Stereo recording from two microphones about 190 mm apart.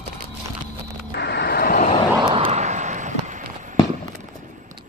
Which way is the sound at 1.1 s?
60° left (ahead or behind).